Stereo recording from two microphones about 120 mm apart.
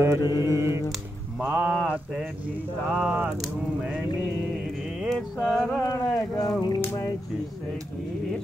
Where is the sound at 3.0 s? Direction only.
15° right (ahead or behind).